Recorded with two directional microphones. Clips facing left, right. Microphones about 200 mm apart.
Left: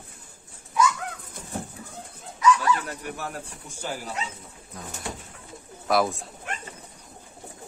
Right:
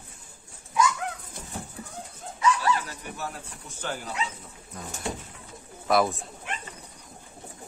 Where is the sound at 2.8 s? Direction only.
60° left (ahead or behind).